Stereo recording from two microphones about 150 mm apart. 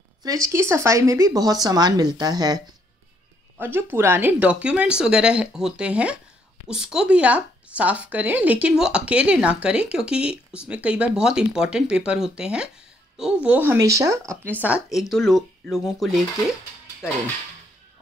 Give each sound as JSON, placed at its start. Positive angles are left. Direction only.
{"t": 0.2, "sound": "speech", "side_deg": -20}
{"t": 3.5, "sound": "speech", "side_deg": -15}
{"t": 14.6, "sound": "speech", "side_deg": -5}